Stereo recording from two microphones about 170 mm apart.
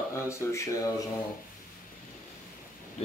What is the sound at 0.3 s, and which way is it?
Speech, 15° left (ahead or behind).